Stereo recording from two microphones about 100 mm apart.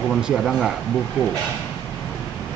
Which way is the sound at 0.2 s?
5° right (ahead or behind).